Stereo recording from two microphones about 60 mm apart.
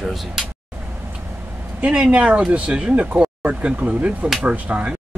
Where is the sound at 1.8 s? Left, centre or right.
Right.